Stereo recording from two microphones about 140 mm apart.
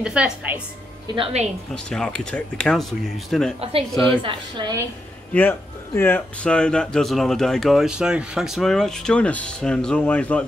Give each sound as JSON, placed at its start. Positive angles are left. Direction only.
{"t": 0.0, "sound": "a woman's voice", "side_deg": -10}
{"t": 1.0, "sound": "a woman's voice", "side_deg": -35}
{"t": 1.9, "sound": "speech", "side_deg": 5}
{"t": 3.5, "sound": "speech", "side_deg": -45}
{"t": 3.9, "sound": "speech", "side_deg": 5}
{"t": 4.2, "sound": "a woman's voice", "side_deg": -35}
{"t": 5.3, "sound": "speech", "side_deg": 15}